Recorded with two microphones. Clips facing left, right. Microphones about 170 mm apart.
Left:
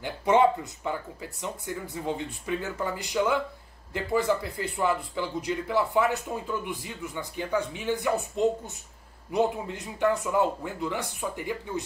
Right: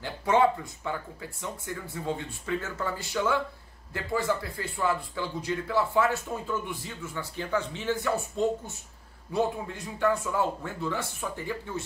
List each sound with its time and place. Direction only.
0.0 s speech: 20° left (ahead or behind)